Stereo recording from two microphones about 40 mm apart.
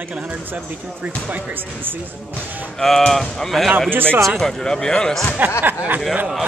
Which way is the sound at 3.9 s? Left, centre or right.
Right.